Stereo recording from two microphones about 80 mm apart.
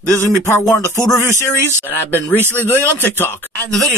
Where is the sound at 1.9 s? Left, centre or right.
Left.